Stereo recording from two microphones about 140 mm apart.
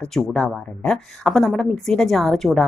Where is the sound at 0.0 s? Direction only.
5° left (ahead or behind).